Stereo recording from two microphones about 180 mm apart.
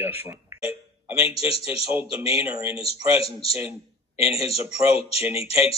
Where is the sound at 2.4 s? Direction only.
15° right (ahead or behind).